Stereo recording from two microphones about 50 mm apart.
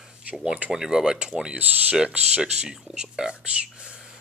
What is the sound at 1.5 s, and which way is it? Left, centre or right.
Speech, right.